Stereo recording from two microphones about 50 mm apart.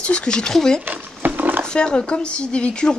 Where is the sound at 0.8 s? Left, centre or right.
Right.